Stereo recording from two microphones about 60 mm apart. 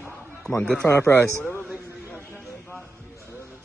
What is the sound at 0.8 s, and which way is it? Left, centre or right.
Speech, left.